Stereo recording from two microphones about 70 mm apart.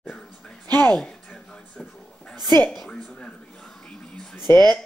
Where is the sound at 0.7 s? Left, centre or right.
Right.